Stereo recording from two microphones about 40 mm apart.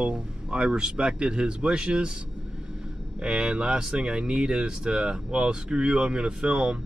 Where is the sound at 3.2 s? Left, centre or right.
Right.